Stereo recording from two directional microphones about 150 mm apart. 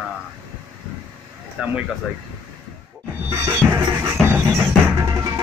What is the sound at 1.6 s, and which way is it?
Speech, 5° right (ahead or behind).